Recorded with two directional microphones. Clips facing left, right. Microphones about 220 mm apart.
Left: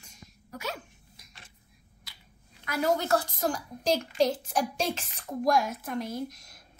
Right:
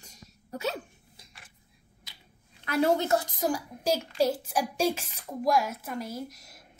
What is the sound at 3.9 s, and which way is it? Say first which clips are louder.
A child's voice: even; 5° right (ahead or behind).